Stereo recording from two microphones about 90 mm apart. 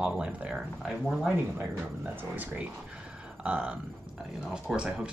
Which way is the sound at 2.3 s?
15° right (ahead or behind).